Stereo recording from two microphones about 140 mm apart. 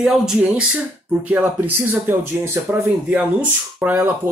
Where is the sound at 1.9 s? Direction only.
15° right (ahead or behind).